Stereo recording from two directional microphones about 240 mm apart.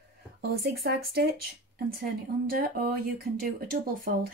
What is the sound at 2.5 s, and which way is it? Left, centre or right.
Speech, right.